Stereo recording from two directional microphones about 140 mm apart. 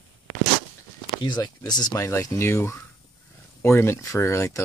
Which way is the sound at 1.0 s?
35° left (ahead or behind).